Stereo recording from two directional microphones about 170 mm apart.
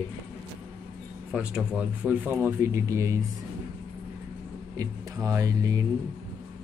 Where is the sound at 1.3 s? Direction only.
5° right (ahead or behind).